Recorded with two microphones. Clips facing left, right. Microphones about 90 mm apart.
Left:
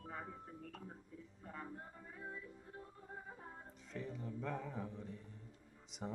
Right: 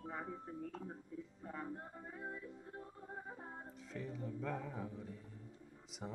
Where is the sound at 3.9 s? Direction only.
Centre (ahead or behind).